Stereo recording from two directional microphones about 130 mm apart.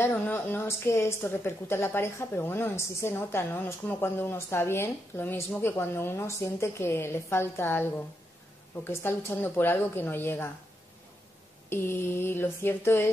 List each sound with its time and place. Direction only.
0.0 s a woman's voice: 15° left (ahead or behind)
11.7 s speech: 20° left (ahead or behind)